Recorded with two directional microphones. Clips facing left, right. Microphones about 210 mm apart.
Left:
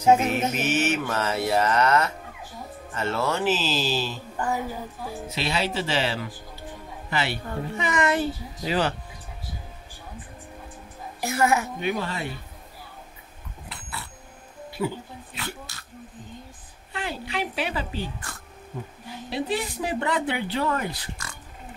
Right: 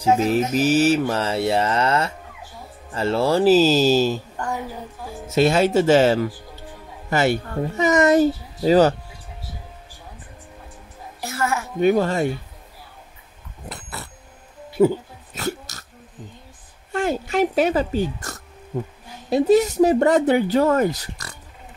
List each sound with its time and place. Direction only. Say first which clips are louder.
0.0 s mantra: right 2 dB; 35° right (ahead or behind)
2.9 s speech: right 7 dB; 30° right (ahead or behind)
5.3 s speech: right 12 dB; 45° right (ahead or behind)
11.1 s a woman's voice: left 2 dB; 15° left (ahead or behind)
11.8 s speech: right 10 dB; 45° right (ahead or behind)
13.7 s a sound: right 5 dB; 45° right (ahead or behind)
14.8 s speech: right 12 dB; 40° right (ahead or behind)
15.3 s burping: right 10 dB; 40° right (ahead or behind)
16.9 s speech: right 9 dB; 45° right (ahead or behind)